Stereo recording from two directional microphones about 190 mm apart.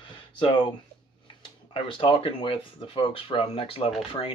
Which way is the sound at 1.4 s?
25° left (ahead or behind).